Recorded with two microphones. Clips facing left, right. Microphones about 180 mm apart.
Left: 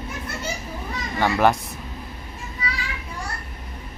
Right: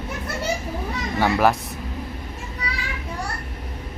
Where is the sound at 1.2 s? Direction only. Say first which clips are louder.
Even; 5° right (ahead or behind).